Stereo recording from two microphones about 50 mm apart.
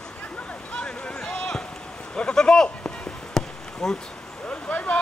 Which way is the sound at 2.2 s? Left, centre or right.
Centre.